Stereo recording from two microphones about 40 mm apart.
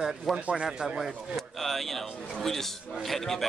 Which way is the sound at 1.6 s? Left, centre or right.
Centre.